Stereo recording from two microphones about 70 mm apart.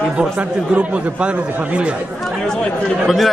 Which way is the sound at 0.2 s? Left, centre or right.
Centre.